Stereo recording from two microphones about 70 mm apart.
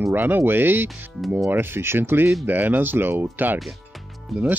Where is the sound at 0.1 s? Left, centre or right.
Right.